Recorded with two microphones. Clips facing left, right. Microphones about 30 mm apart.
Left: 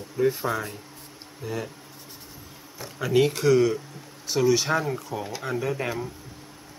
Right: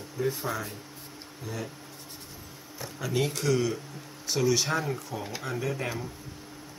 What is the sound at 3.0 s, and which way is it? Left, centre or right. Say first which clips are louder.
Speech: left 8 dB; centre.